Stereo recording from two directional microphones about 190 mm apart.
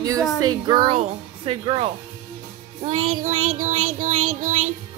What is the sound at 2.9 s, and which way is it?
Child singing, 90° right.